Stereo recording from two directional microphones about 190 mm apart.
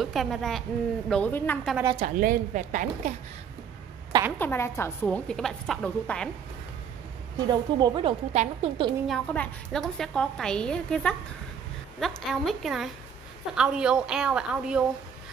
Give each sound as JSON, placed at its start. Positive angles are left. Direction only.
{"t": 0.0, "sound": "a woman's voice", "side_deg": 0}
{"t": 2.1, "sound": "a woman's voice", "side_deg": -50}
{"t": 4.4, "sound": "a woman's voice", "side_deg": 10}
{"t": 7.3, "sound": "a woman's voice", "side_deg": -20}
{"t": 8.3, "sound": "a woman's voice", "side_deg": -35}
{"t": 9.0, "sound": "a woman's voice", "side_deg": 5}